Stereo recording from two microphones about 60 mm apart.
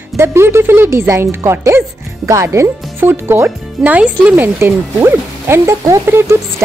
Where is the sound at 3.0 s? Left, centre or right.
Right.